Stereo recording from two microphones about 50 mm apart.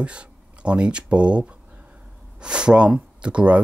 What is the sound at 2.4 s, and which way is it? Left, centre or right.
Speech, centre.